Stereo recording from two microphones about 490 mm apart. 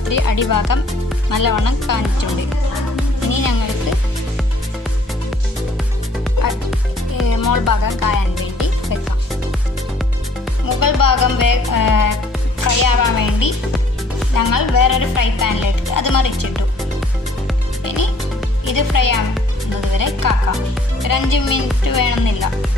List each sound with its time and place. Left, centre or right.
0.1 s speech: left
3.3 s speech: left
7.2 s music: left
10.8 s speech: left
17.8 s music: left
18.7 s speech: left
20.0 s music: left
21.0 s speech: left